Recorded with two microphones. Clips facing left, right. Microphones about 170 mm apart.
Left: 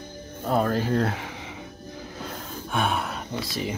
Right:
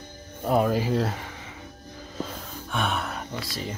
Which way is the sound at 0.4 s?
10° right (ahead or behind).